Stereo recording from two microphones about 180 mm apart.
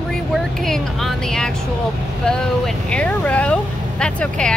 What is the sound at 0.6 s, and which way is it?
Speech, centre (ahead or behind).